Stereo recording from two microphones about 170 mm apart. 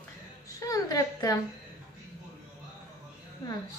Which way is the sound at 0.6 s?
20° left (ahead or behind).